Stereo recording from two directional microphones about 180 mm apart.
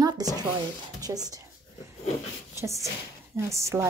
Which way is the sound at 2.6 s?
15° right (ahead or behind).